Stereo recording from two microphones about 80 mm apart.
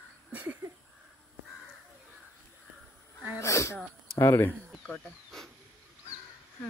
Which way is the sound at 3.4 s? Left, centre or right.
Left.